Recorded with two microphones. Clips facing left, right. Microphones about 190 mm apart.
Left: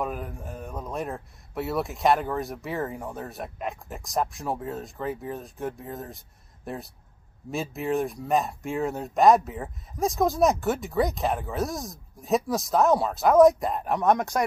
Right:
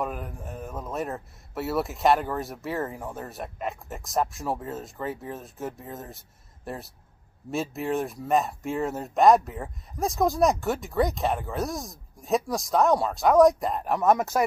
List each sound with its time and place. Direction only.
0.0 s speech: centre (ahead or behind)